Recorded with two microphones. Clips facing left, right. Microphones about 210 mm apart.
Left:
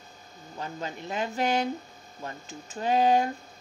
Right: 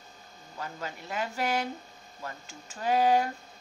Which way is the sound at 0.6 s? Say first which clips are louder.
Left 3 dB; 20° left (ahead or behind).